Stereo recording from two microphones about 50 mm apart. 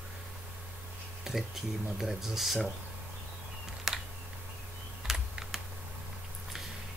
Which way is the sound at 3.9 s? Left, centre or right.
Centre.